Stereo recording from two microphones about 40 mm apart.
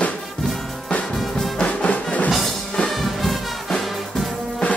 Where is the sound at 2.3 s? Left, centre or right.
Centre.